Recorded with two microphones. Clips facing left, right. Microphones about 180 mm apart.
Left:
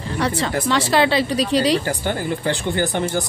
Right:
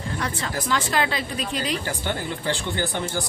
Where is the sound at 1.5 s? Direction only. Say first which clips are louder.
Left 10 dB; 90° left.